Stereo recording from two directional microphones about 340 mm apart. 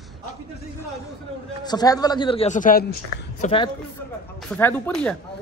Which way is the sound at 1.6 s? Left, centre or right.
Centre.